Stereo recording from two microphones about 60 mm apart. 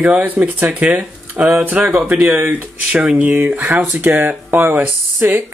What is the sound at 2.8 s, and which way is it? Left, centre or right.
Speech, centre.